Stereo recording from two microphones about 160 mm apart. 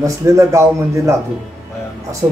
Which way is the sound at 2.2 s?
25° right (ahead or behind).